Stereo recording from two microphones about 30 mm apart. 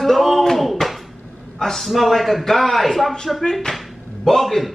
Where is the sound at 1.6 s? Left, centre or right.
Centre.